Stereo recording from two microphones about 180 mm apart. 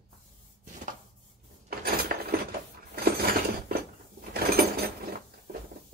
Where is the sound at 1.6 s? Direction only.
60° right (ahead or behind).